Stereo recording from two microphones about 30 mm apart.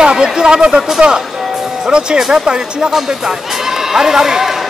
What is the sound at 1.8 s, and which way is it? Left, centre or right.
Speech, right.